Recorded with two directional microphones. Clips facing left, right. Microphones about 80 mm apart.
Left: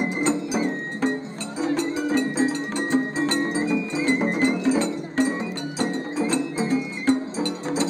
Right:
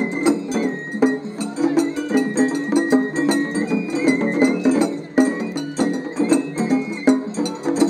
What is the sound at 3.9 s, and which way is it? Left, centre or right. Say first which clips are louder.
Music: right 6 dB; centre.